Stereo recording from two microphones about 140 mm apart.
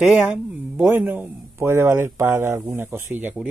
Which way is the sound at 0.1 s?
5° right (ahead or behind).